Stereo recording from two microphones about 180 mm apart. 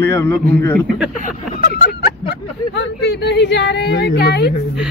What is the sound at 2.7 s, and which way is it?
A woman's voice, 70° left (ahead or behind).